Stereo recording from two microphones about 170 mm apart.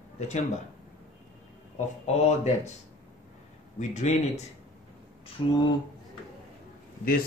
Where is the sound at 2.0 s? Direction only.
40° left (ahead or behind).